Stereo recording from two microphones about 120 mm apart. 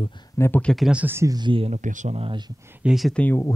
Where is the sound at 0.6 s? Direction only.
Centre (ahead or behind).